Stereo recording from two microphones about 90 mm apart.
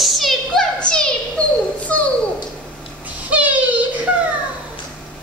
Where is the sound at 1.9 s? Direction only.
15° left (ahead or behind).